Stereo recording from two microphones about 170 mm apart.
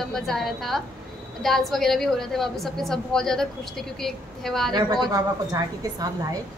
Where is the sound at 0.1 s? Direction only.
Centre (ahead or behind).